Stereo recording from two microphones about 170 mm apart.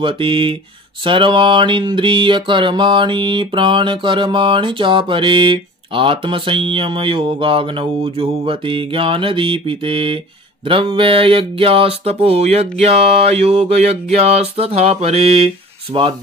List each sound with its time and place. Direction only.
0.0 s mantra: 30° right (ahead or behind)
1.0 s a sound: 30° right (ahead or behind)
10.7 s mantra: 30° right (ahead or behind)